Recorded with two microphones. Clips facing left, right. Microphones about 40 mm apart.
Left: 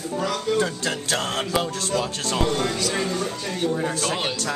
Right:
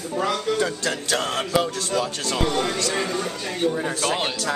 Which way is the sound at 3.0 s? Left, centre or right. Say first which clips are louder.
Even; centre.